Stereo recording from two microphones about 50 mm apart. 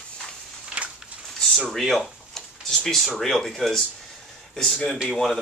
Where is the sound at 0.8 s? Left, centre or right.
Right.